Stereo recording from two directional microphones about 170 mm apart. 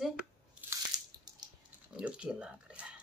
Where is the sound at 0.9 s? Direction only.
25° right (ahead or behind).